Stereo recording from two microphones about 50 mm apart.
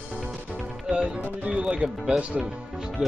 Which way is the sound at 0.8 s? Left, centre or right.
Centre.